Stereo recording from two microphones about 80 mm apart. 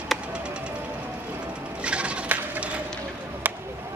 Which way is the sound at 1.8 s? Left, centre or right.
Centre.